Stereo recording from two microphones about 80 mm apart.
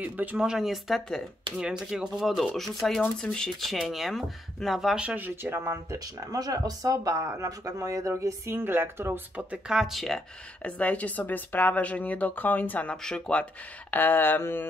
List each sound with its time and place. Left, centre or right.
0.0 s speech: right
0.4 s speech: centre
5.0 s speech: right
6.3 s speech: right
9.5 s speech: centre
10.6 s speech: centre
12.9 s speech: centre; by 14.7 s left